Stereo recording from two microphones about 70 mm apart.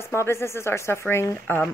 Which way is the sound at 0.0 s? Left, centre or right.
Left.